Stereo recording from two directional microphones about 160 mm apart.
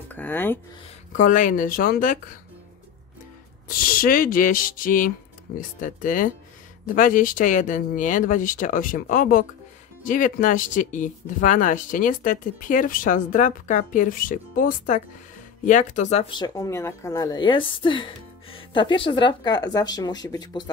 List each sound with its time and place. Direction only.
0.1 s speech: 10° left (ahead or behind)
1.1 s speech: 55° left (ahead or behind)
3.6 s speech: 65° left (ahead or behind); by 16.3 s 45° left (ahead or behind)
16.3 s a woman's voice: 25° left (ahead or behind)